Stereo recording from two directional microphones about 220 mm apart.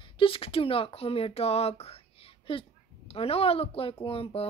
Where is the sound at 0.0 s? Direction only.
25° left (ahead or behind).